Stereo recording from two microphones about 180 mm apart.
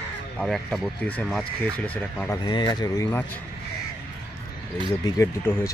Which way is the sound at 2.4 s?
25° left (ahead or behind).